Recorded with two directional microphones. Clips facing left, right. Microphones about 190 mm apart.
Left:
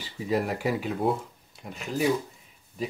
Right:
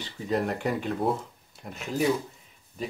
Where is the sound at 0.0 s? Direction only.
5° left (ahead or behind).